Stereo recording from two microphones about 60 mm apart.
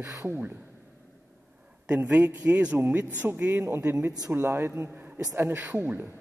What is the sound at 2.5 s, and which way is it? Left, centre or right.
Speech, centre.